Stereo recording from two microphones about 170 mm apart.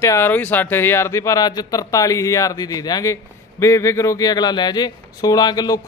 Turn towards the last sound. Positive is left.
turn(degrees=20)  # may be behind; listen again after turning